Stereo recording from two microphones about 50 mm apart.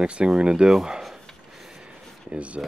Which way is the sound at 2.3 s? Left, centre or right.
Right.